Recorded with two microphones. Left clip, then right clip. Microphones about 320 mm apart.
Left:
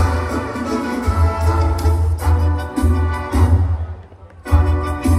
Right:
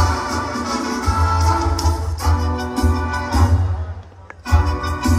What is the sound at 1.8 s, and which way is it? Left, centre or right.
Music, centre.